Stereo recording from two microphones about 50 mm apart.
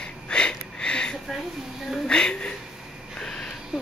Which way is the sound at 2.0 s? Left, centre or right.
Centre.